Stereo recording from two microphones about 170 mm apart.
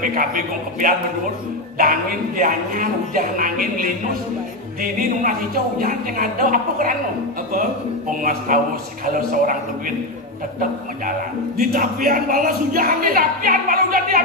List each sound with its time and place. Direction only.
0.0 s speech: 55° right (ahead or behind)
8.1 s a man's voice: 55° right (ahead or behind)